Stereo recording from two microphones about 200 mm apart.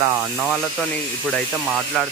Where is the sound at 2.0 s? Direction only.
Centre (ahead or behind).